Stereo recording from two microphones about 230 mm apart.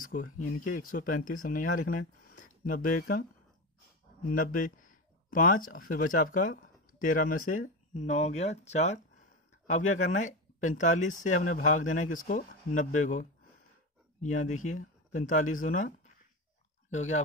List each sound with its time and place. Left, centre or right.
0.0 s a sound: left
0.7 s speech: left
4.3 s speech: left
16.9 s speech: left